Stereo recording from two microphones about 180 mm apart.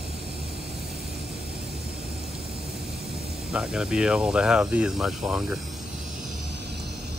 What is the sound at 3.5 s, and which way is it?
Speech, 5° right (ahead or behind).